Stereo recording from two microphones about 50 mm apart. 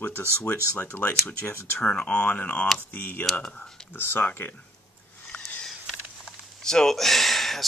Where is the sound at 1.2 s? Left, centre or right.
Left.